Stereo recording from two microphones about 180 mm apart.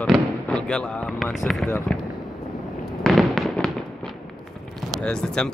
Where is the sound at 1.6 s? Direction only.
10° left (ahead or behind).